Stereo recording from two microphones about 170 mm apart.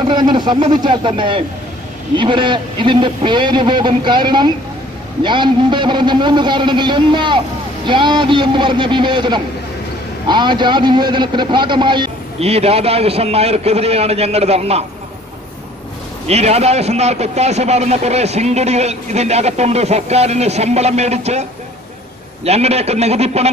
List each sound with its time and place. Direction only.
0.1 s a man's voice: 25° right (ahead or behind)
16.3 s a man's voice: 40° right (ahead or behind)